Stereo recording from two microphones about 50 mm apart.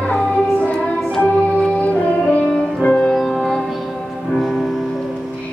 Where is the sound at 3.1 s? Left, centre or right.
Centre.